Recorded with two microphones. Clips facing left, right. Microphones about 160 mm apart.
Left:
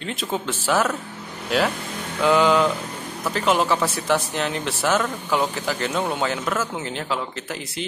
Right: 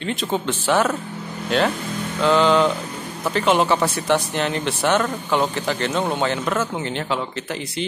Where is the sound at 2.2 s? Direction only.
10° left (ahead or behind).